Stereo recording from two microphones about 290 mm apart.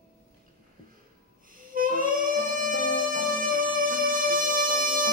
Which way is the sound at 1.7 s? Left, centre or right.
Right.